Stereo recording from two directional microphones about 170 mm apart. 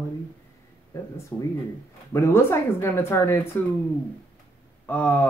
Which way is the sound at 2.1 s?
15° left (ahead or behind).